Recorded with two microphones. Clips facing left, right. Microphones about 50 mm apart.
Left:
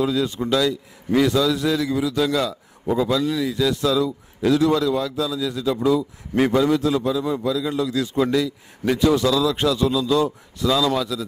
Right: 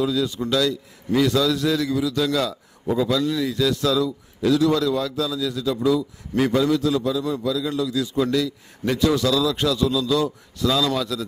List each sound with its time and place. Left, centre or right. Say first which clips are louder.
0.0 s a man's voice: left 1 dB; left
7.9 s a man's voice: left 1 dB; left
8.3 s a man's voice: left 1 dB; centre
10.6 s a man's voice: left 1 dB; centre